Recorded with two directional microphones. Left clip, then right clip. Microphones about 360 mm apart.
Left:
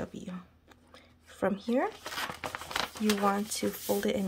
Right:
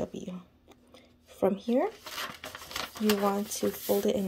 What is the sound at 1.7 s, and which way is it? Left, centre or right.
Speech, left.